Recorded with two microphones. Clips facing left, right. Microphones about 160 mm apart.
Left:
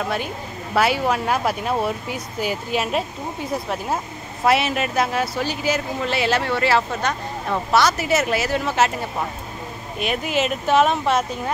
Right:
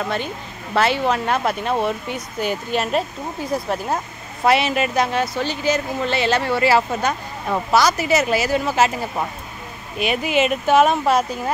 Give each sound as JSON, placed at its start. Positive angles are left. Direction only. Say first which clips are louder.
{"t": 0.7, "sound": "speech", "louder": "right 1 dB", "side_deg": 10}
{"t": 4.5, "sound": "speech", "louder": "right 2 dB", "side_deg": 0}